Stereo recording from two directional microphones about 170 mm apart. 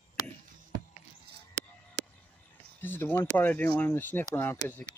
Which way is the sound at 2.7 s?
10° left (ahead or behind).